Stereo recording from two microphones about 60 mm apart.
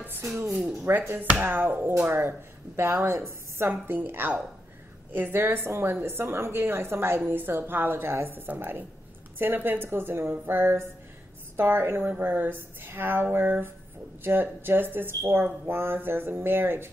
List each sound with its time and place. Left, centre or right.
0.7 s chopping: right
1.1 s speech: right